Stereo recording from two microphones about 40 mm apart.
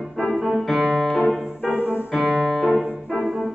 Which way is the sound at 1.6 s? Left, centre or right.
Right.